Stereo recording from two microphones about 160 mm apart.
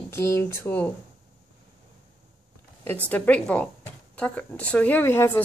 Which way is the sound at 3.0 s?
10° left (ahead or behind).